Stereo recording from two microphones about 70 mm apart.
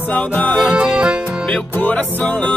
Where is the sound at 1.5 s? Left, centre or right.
Centre.